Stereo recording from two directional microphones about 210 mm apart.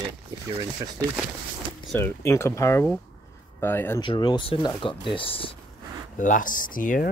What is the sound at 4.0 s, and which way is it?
Speech, 20° left (ahead or behind).